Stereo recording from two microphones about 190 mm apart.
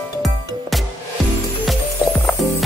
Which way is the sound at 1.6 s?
Centre (ahead or behind).